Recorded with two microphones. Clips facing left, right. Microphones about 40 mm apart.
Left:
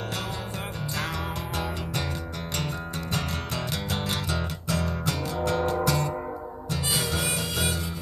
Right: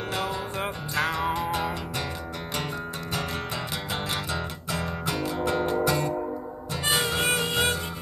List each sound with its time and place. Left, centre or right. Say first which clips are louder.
0.9 s music: right 7 dB; centre
3.9 s music: right 1 dB; centre
6.9 s harmonica: right 5 dB; right